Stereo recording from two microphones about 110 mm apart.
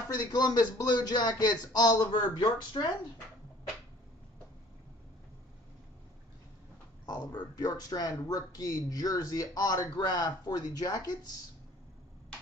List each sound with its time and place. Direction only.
0.1 s speech: 40° left (ahead or behind)
7.1 s speech: 35° left (ahead or behind)